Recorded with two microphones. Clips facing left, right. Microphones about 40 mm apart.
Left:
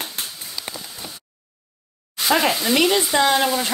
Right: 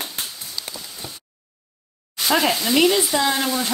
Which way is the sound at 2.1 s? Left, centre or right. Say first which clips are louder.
Left 1 dB; centre.